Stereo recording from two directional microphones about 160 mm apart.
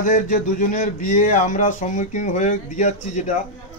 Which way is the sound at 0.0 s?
55° left (ahead or behind).